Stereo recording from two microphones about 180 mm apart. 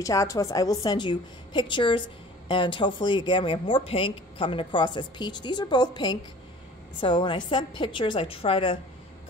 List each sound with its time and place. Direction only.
0.0 s a woman's voice: 20° left (ahead or behind)